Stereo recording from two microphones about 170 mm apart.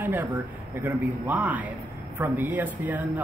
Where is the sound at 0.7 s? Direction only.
10° right (ahead or behind).